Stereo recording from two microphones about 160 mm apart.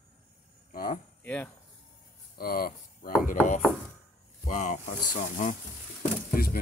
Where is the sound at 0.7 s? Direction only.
65° left (ahead or behind).